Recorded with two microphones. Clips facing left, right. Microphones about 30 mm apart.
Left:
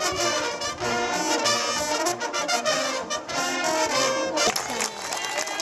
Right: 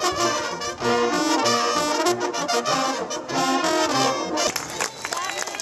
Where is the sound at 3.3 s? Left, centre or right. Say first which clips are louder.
Right 4 dB; right.